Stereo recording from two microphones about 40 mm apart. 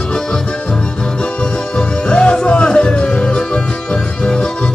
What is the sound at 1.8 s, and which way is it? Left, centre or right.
Music, centre.